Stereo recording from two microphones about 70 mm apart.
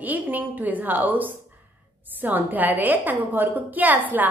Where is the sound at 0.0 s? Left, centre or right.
Right.